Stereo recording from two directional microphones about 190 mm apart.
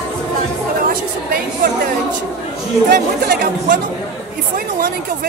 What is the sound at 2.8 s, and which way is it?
Speech, 50° right (ahead or behind).